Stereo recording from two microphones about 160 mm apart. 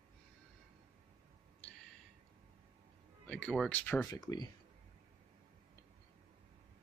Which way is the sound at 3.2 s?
5° left (ahead or behind).